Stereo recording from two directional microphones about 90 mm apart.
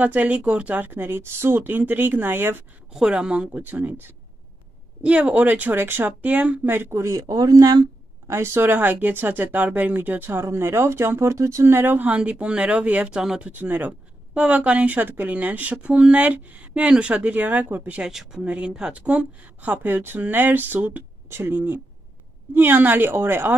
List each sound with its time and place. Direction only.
0.0 s speech: 15° right (ahead or behind)
2.9 s a woman's voice: 10° right (ahead or behind)
3.6 s speech: 20° right (ahead or behind); by 7.8 s 45° right (ahead or behind)
8.3 s speech: 30° right (ahead or behind); by 13.5 s 10° right (ahead or behind)
13.5 s a woman's voice: 20° right (ahead or behind)
18.0 s speech: 5° right (ahead or behind); by 23.5 s 25° right (ahead or behind)